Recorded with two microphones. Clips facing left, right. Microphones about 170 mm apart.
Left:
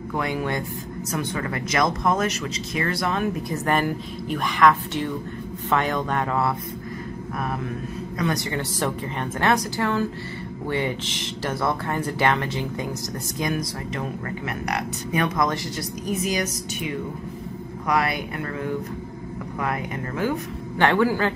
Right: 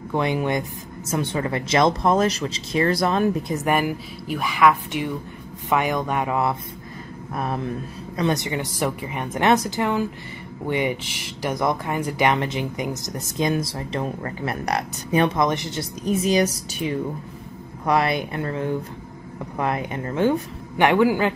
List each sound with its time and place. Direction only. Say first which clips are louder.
0.1 s speech: right 4 dB; 20° right (ahead or behind)
3.5 s speech: right 1 dB; 10° right (ahead or behind)
8.2 s speech: right 3 dB; 20° right (ahead or behind)
20.7 s speech: right 2 dB; 15° right (ahead or behind)